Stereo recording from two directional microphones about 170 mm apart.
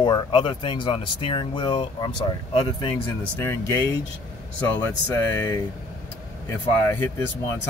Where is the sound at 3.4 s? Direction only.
15° left (ahead or behind).